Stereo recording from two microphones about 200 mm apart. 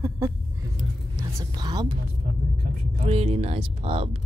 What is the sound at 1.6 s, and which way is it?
Speech, 20° right (ahead or behind).